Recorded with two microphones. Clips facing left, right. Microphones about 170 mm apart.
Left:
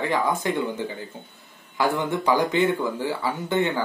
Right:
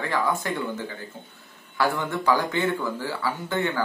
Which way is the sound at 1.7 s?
20° left (ahead or behind).